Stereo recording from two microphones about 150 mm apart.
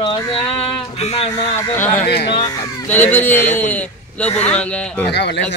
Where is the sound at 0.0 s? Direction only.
35° left (ahead or behind).